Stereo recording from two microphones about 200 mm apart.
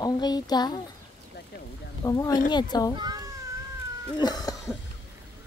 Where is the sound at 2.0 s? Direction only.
15° left (ahead or behind).